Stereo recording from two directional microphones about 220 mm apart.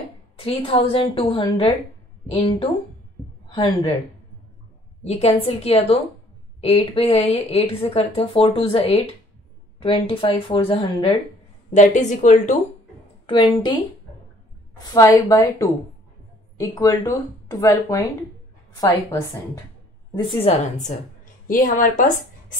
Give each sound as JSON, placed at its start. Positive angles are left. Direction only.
{"t": 0.4, "sound": "a woman's voice", "side_deg": 25}
{"t": 3.4, "sound": "a sound", "side_deg": 25}
{"t": 5.0, "sound": "a woman's voice", "side_deg": 25}
{"t": 11.7, "sound": "speech", "side_deg": 35}
{"t": 13.3, "sound": "a woman's voice", "side_deg": 25}
{"t": 14.8, "sound": "speech", "side_deg": 15}
{"t": 16.5, "sound": "speech", "side_deg": 15}
{"t": 20.2, "sound": "a woman's voice", "side_deg": 25}
{"t": 21.5, "sound": "speech", "side_deg": 40}